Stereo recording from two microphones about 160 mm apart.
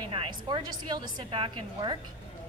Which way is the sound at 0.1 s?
30° right (ahead or behind).